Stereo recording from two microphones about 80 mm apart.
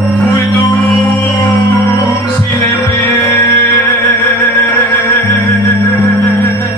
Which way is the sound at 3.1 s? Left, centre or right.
Left.